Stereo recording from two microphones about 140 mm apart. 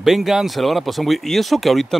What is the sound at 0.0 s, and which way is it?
Speech, centre (ahead or behind).